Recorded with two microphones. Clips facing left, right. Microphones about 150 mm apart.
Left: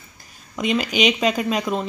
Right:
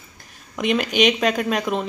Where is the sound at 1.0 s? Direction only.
5° left (ahead or behind).